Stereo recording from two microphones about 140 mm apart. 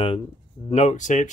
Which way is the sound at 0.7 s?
50° left (ahead or behind).